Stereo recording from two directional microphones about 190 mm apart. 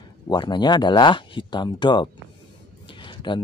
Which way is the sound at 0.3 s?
25° left (ahead or behind).